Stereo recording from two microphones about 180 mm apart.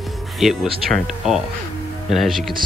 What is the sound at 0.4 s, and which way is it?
Speech, centre (ahead or behind).